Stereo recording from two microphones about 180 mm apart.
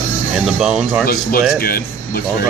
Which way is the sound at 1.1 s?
55° left (ahead or behind).